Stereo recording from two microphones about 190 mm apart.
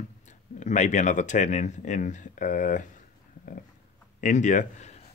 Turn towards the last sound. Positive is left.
turn(degrees=40)  # may be behind; listen again after turning